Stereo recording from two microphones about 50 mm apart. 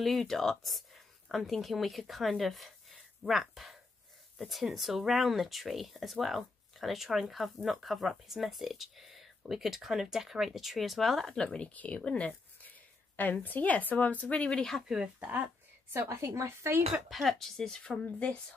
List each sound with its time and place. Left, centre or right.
0.0 s speech: centre
11.3 s speech: centre
11.7 s speech: left
12.3 s speech: left
14.2 s speech: left
15.1 s speech: right
15.9 s a woman's voice: right
16.9 s speech: centre
17.6 s speech: centre
17.8 s speech: left